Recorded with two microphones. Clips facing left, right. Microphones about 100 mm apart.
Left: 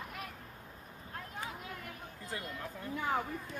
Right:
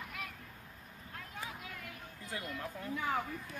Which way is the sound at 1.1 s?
35° left (ahead or behind).